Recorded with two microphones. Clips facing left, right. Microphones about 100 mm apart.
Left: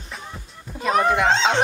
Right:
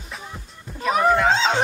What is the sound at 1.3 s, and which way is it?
Snicker, 5° right (ahead or behind).